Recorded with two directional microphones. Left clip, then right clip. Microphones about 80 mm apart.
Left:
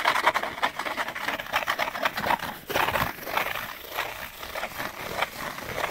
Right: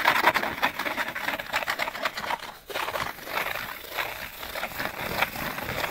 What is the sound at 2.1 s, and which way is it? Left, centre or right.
Dog, left.